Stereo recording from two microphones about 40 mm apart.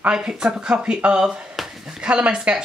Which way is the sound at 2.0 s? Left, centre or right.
Right.